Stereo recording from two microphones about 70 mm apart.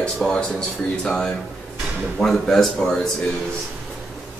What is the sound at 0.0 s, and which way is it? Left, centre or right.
Speech, centre.